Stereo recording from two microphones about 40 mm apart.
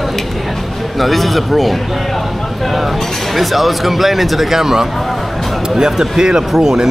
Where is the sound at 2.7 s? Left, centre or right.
Centre.